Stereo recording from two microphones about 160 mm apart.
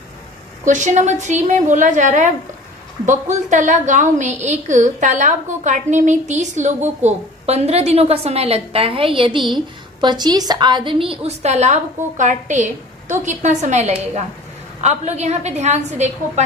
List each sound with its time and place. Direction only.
0.7 s a woman's voice: 50° right (ahead or behind)